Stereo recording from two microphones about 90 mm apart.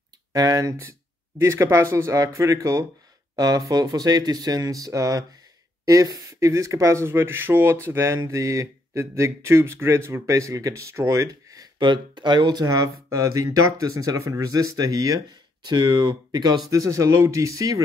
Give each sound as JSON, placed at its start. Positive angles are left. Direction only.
{"t": 0.3, "sound": "speech", "side_deg": -40}
{"t": 11.8, "sound": "speech", "side_deg": -60}
{"t": 12.6, "sound": "speech", "side_deg": -35}
{"t": 15.7, "sound": "speech", "side_deg": -55}
{"t": 16.7, "sound": "speech", "side_deg": -40}